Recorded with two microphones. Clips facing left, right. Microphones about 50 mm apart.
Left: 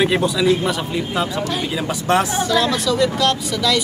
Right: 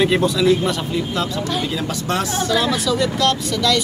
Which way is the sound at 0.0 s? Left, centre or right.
Centre.